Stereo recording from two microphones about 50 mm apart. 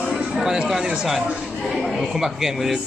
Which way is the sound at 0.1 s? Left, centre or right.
Centre.